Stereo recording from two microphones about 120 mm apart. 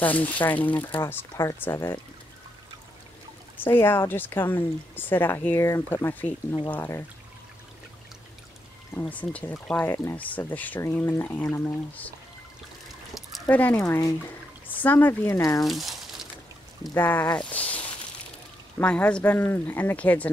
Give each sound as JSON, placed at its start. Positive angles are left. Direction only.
{"t": 0.0, "sound": "speech", "side_deg": 15}
{"t": 3.5, "sound": "speech", "side_deg": 20}
{"t": 9.1, "sound": "speech", "side_deg": 10}
{"t": 13.5, "sound": "speech", "side_deg": 15}
{"t": 15.6, "sound": "crumpling", "side_deg": 0}
{"t": 16.9, "sound": "speech", "side_deg": 15}